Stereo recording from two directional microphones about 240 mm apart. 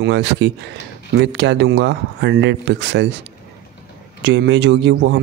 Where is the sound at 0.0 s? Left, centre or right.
Right.